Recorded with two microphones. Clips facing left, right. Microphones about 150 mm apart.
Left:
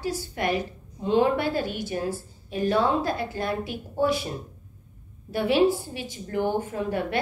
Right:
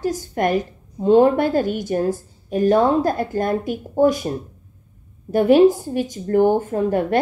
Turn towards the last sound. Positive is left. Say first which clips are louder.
# right 8 dB
turn(degrees=-45)  # may be behind; listen again after turning